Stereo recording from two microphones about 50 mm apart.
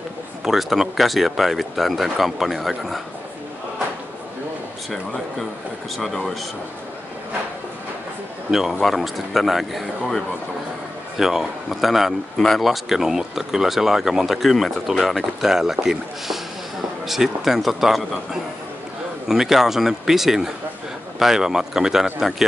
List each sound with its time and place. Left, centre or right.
0.5 s speech: centre
5.9 s speech: centre
8.5 s speech: centre
12.4 s speech: centre
12.6 s speech: centre